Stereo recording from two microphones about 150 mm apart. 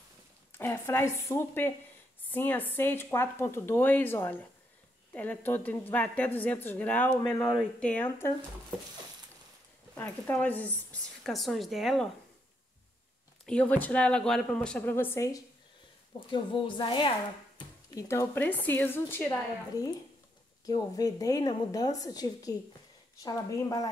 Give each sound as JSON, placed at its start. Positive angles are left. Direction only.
{"t": 0.5, "sound": "speech", "side_deg": 15}
{"t": 9.9, "sound": "speech", "side_deg": 15}
{"t": 13.5, "sound": "speech", "side_deg": 10}
{"t": 16.3, "sound": "a woman's voice", "side_deg": 30}
{"t": 18.0, "sound": "speech", "side_deg": 15}
{"t": 20.6, "sound": "a woman's voice", "side_deg": 25}